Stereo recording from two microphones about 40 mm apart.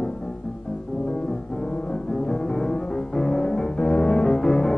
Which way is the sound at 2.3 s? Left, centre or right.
Centre.